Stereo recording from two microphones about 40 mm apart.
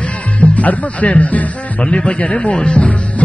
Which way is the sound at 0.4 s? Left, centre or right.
Left.